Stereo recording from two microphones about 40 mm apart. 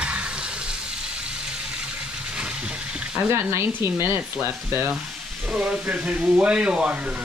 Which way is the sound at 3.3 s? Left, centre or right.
Right.